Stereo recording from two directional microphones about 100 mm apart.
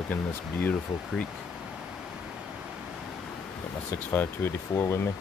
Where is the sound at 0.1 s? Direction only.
20° left (ahead or behind).